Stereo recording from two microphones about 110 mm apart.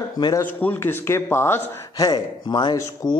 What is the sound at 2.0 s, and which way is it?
A man's voice, 40° left (ahead or behind).